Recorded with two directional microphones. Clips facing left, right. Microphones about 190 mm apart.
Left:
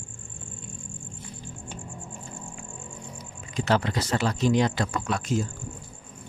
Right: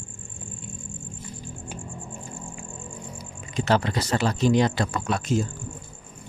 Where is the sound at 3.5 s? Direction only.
30° right (ahead or behind).